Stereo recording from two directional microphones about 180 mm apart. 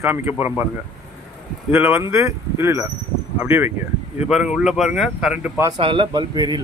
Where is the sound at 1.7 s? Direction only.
10° right (ahead or behind).